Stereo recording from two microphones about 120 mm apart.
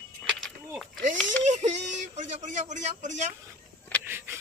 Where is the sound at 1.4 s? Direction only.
75° right (ahead or behind).